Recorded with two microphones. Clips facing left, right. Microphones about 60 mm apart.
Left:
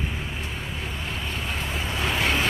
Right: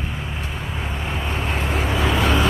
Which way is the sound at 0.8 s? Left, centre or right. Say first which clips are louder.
Right 7 dB; right.